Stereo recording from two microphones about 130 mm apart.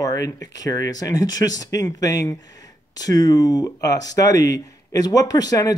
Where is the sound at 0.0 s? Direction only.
25° left (ahead or behind).